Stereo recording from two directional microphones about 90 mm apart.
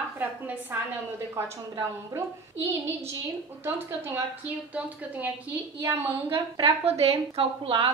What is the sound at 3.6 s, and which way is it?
A woman's voice, 25° right (ahead or behind).